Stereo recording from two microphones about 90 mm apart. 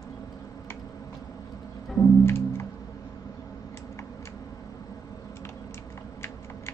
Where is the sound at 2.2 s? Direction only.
30° left (ahead or behind).